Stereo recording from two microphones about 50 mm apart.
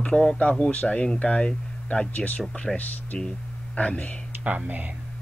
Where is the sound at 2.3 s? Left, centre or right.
Left.